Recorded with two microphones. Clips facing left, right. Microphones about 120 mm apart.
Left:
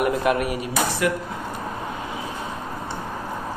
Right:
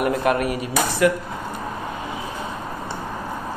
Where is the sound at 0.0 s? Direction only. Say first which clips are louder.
Right 1 dB; 40° right (ahead or behind).